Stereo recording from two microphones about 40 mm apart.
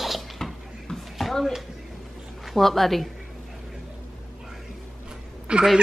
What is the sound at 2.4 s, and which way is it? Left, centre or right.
Speech, centre.